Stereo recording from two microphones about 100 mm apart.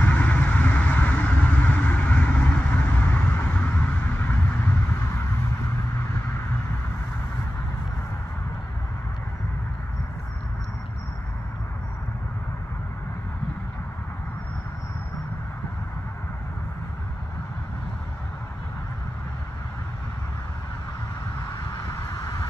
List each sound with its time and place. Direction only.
0.0 s vehicle: 15° left (ahead or behind)
21.9 s vehicle: 35° left (ahead or behind)